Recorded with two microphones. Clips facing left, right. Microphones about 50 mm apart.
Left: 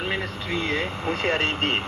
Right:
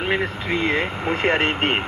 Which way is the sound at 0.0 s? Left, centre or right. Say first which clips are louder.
Right 5 dB; right.